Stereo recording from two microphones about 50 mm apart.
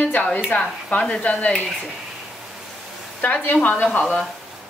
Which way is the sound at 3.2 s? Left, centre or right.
Left.